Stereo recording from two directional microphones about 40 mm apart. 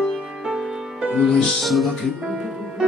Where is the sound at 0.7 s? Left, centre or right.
Centre.